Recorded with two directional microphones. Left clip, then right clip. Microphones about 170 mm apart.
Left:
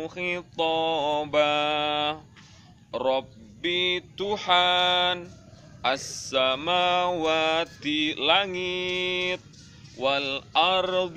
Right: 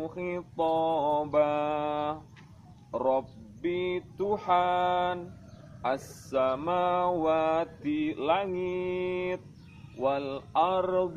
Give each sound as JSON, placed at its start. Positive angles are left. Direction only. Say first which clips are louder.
{"t": 0.0, "sound": "mantra", "louder": "left 4 dB", "side_deg": 15}
{"t": 6.2, "sound": "mantra", "louder": "left 3 dB", "side_deg": 15}